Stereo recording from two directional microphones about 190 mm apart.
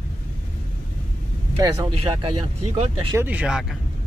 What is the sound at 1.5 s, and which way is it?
Speech, 15° right (ahead or behind).